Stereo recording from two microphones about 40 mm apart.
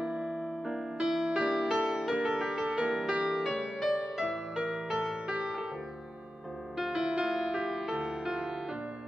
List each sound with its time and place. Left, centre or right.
0.0 s music: centre
3.3 s music: centre
6.8 s music: centre